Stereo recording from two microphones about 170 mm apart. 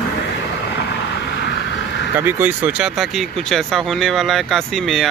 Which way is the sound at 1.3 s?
90° left.